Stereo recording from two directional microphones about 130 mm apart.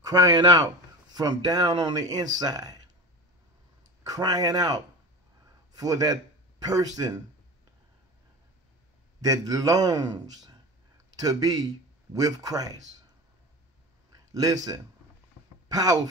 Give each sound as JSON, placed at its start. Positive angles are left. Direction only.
{"t": 0.0, "sound": "speech", "side_deg": -30}
{"t": 4.0, "sound": "speech", "side_deg": -30}
{"t": 9.2, "sound": "speech", "side_deg": -25}
{"t": 14.3, "sound": "speech", "side_deg": -30}